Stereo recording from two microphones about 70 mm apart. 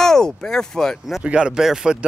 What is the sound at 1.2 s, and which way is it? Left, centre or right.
Speech, centre.